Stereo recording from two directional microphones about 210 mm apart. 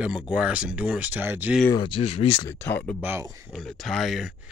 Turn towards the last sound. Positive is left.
turn(degrees=0)  # may be behind; listen again after turning